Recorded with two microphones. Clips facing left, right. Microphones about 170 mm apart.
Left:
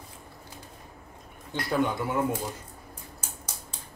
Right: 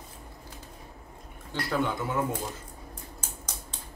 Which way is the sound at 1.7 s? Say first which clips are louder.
Left 2 dB; 15° left (ahead or behind).